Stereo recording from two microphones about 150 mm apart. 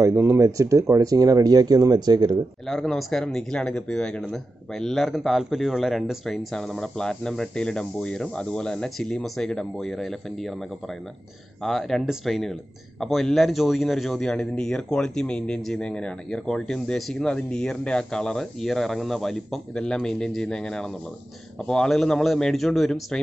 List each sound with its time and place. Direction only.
0.0 s speech: 20° right (ahead or behind)
2.6 s a man's voice: centre (ahead or behind)
11.6 s a man's voice: centre (ahead or behind)